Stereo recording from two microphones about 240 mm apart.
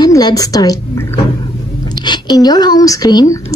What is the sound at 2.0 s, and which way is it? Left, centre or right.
Speech, centre.